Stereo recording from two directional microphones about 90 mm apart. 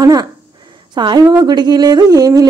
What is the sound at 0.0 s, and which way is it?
Speech, 45° right (ahead or behind).